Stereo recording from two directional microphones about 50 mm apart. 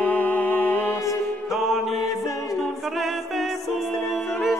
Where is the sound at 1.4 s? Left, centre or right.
Centre.